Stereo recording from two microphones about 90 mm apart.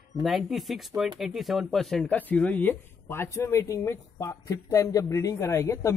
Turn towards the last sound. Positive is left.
turn(degrees=35)  # may be behind; listen again after turning